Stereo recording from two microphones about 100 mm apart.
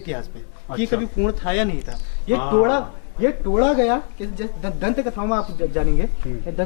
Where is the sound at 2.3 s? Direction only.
10° left (ahead or behind).